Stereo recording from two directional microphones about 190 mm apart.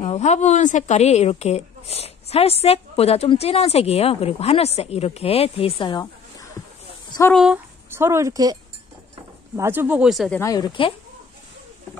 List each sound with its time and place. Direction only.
0.0 s a woman's voice: 35° left (ahead or behind)
7.1 s speech: 15° left (ahead or behind)
7.3 s speech: 5° right (ahead or behind)
9.6 s speech: 10° right (ahead or behind)
10.4 s speech: 20° left (ahead or behind)